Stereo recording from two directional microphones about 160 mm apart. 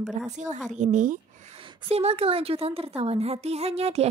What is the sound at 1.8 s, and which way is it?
A woman's voice, 40° right (ahead or behind).